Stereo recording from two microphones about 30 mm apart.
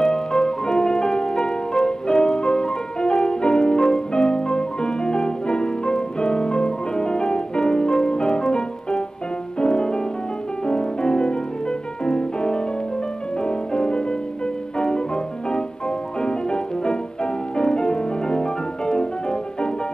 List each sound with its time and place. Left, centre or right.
0.0 s music: left
9.6 s music: left